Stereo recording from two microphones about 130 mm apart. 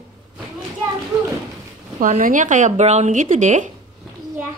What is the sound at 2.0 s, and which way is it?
Speech, 90° right.